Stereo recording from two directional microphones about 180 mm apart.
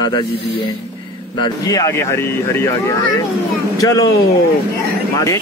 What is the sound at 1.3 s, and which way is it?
A man's voice, 20° left (ahead or behind).